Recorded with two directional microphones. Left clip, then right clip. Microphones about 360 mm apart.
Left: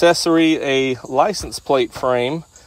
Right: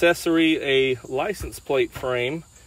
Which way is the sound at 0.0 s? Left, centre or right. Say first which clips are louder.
Left 5 dB; left.